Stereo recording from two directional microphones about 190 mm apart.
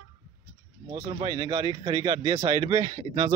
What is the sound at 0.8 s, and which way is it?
Speech, 20° right (ahead or behind).